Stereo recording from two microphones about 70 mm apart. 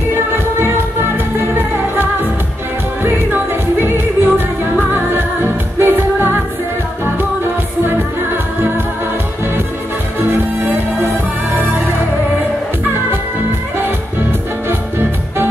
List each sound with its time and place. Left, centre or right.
3.0 s music: right
14.7 s music: right